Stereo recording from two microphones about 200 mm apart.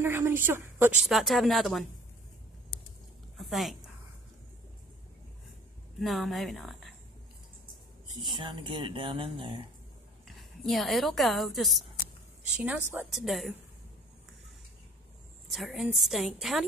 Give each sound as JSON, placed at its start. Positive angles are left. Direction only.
{"t": 0.0, "sound": "a woman's voice", "side_deg": -10}
{"t": 3.3, "sound": "a sound", "side_deg": 0}
{"t": 5.9, "sound": "a woman's voice", "side_deg": 0}
{"t": 8.2, "sound": "speech", "side_deg": -25}
{"t": 10.2, "sound": "a woman's voice", "side_deg": 0}
{"t": 15.5, "sound": "a woman's voice", "side_deg": 0}